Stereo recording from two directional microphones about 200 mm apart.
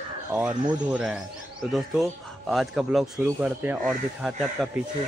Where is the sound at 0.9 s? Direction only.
5° right (ahead or behind).